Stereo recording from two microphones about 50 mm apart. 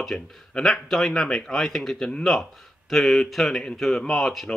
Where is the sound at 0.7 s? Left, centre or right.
Centre.